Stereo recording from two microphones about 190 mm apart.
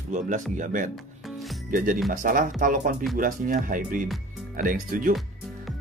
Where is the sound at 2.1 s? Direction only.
45° right (ahead or behind).